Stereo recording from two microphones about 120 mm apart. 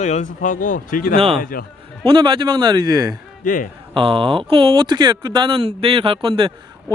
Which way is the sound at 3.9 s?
50° right (ahead or behind).